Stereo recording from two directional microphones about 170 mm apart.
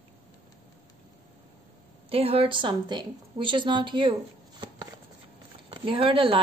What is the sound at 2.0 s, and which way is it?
A woman's voice, 35° right (ahead or behind).